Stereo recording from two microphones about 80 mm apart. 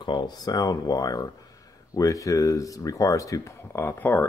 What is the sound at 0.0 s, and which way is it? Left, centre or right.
Speech, left.